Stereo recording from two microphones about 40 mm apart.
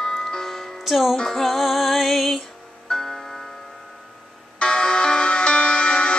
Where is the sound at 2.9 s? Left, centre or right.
Centre.